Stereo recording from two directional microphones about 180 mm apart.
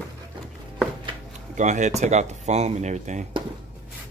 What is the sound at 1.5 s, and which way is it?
Speech, 40° right (ahead or behind).